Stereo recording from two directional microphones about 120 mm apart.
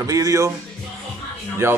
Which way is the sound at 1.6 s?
25° right (ahead or behind).